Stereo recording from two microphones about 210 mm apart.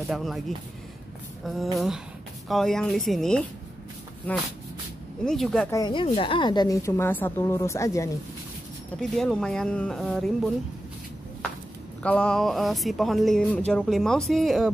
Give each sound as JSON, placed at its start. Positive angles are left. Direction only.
{"t": 0.1, "sound": "speech", "side_deg": 0}
{"t": 1.4, "sound": "a woman's voice", "side_deg": 0}
{"t": 5.7, "sound": "a woman's voice", "side_deg": 20}
{"t": 9.0, "sound": "speech", "side_deg": 0}
{"t": 12.0, "sound": "speech", "side_deg": 5}